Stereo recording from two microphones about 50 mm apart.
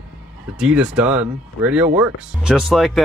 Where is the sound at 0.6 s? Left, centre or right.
Right.